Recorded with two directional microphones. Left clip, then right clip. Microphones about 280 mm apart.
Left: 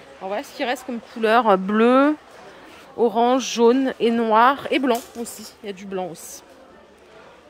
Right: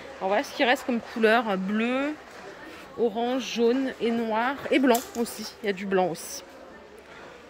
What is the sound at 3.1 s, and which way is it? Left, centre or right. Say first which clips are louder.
Speech: left 9 dB; centre.